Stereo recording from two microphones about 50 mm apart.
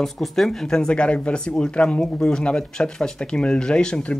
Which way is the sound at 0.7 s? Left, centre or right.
Centre.